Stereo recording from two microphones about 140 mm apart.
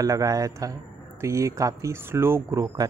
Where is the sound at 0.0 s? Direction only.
25° right (ahead or behind).